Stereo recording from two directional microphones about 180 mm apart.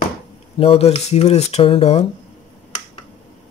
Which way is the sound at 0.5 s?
30° left (ahead or behind).